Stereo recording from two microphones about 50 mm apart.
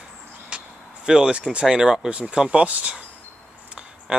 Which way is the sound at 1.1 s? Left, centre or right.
Centre.